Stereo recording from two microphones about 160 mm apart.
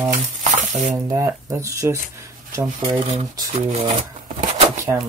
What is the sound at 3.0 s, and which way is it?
Speech, 40° right (ahead or behind).